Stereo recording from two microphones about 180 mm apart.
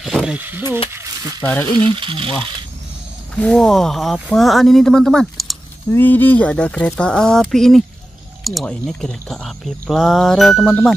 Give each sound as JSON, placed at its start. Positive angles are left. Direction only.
{"t": 0.0, "sound": "speech", "side_deg": 0}
{"t": 1.4, "sound": "speech", "side_deg": 10}
{"t": 1.9, "sound": "speech", "side_deg": -30}
{"t": 3.3, "sound": "speech", "side_deg": 5}
{"t": 5.9, "sound": "speech", "side_deg": 10}